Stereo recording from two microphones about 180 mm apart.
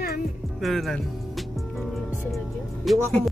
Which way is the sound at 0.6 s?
Centre (ahead or behind).